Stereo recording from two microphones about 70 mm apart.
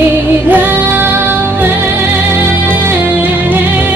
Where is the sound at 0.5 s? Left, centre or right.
Right.